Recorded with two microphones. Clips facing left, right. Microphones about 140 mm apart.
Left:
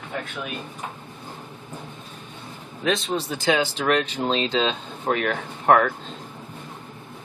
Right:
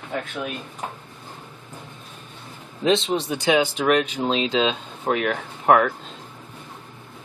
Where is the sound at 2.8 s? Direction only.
25° right (ahead or behind); by 5.9 s centre (ahead or behind).